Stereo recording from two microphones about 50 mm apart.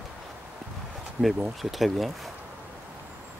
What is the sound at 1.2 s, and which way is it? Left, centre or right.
Speech, right.